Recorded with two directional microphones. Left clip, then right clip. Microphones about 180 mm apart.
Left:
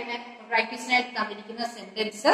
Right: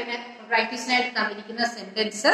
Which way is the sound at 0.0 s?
50° right (ahead or behind).